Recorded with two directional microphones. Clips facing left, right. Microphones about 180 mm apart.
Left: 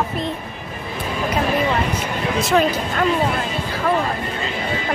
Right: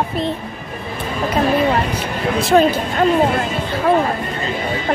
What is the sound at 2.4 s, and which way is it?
Speech, 30° right (ahead or behind).